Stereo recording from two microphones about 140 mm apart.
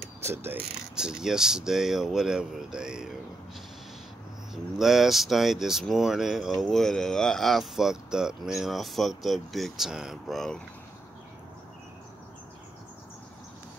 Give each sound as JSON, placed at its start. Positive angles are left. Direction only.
{"t": 0.2, "sound": "mechanisms", "side_deg": -15}
{"t": 0.9, "sound": "speech", "side_deg": -5}
{"t": 4.7, "sound": "speech", "side_deg": 0}